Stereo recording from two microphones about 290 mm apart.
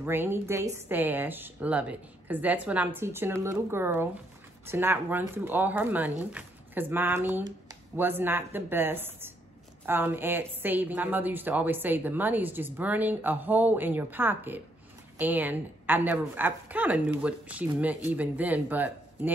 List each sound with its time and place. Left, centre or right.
0.0 s a woman's voice: centre